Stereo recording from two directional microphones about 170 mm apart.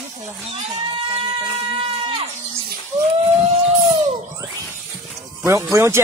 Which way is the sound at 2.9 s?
20° right (ahead or behind).